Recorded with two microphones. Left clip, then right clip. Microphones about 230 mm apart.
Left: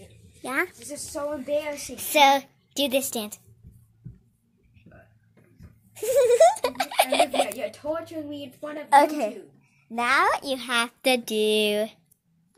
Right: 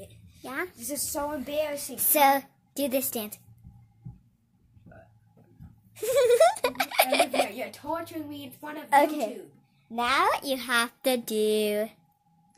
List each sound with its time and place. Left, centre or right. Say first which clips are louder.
0.4 s a sound: left 7 dB; left
0.8 s a woman's voice: left 1 dB; right
1.8 s a child's voice: left 5 dB; centre
5.9 s giggle: left 3 dB; centre
7.7 s a woman's voice: left 3 dB; right
8.9 s a child's voice: left 4 dB; centre